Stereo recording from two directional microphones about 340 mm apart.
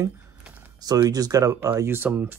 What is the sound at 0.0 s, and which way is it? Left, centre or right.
Speech, centre.